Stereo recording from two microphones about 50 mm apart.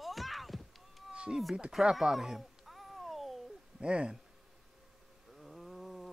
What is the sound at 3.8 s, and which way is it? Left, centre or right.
Speech, right.